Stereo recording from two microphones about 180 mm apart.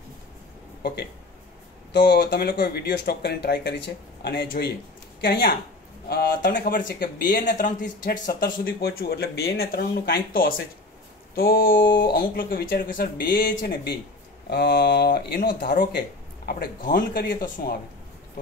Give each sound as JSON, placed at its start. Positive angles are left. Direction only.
{"t": 1.9, "sound": "speech", "side_deg": 65}